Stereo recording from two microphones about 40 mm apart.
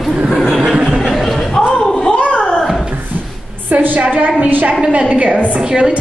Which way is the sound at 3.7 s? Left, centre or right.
Right.